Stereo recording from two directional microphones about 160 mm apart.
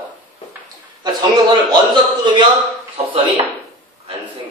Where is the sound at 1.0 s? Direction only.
25° right (ahead or behind).